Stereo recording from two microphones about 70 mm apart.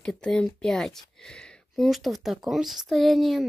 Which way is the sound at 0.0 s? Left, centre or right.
Centre.